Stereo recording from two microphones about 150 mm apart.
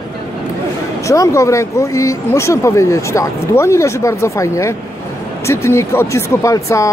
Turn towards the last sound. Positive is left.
turn(degrees=20)  # may be behind; listen again after turning